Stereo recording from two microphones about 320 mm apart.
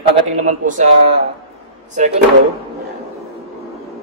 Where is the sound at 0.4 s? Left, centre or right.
Right.